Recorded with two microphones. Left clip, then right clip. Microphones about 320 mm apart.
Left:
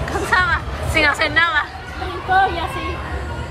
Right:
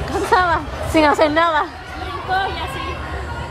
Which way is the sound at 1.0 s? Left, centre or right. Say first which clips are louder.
Right 2 dB; centre.